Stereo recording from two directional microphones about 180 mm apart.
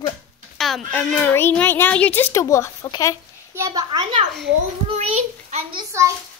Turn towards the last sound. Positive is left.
turn(degrees=-15)  # may be behind; listen again after turning